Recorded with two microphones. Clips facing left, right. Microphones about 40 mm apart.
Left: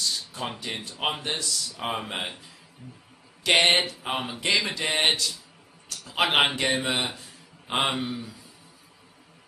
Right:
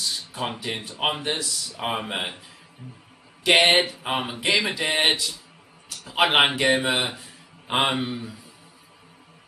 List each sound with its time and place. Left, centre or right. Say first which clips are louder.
0.0 s a man's voice: right 2 dB; centre
5.9 s a sound: right 3 dB; centre
6.3 s speech: right 3 dB; centre